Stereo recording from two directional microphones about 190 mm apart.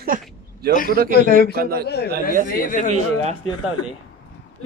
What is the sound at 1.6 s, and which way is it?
Speech, 55° right (ahead or behind).